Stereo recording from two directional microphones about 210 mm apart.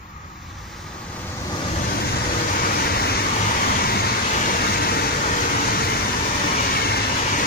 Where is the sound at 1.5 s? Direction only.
25° left (ahead or behind).